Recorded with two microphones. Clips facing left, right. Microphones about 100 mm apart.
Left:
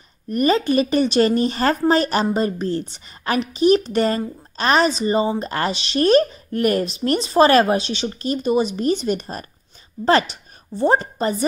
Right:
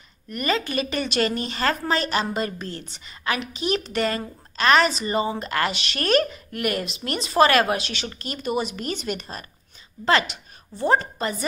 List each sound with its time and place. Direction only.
0.3 s speech: 35° left (ahead or behind)